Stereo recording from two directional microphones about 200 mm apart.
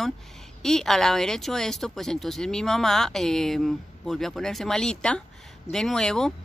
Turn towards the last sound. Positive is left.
turn(degrees=5)  # may be behind; listen again after turning